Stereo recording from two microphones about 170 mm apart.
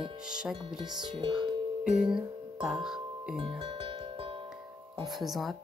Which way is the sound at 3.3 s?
30° right (ahead or behind).